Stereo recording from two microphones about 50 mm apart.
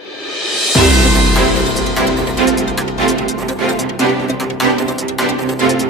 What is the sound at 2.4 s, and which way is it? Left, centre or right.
Music, centre.